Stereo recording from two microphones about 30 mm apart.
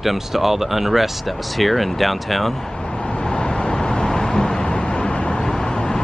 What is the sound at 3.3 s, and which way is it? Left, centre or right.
Vehicle, left.